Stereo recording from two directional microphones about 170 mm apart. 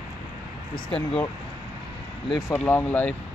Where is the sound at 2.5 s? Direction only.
15° left (ahead or behind).